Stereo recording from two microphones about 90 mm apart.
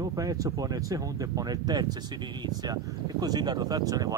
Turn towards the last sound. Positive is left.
turn(degrees=-45)  # may be behind; listen again after turning